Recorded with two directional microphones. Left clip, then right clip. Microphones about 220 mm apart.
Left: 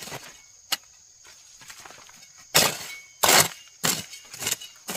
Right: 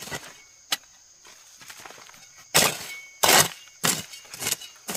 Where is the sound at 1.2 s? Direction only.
Centre (ahead or behind).